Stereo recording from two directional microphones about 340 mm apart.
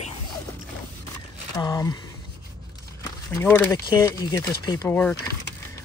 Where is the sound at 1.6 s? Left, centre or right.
Centre.